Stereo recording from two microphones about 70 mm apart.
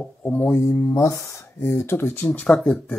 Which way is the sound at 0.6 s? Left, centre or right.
Left.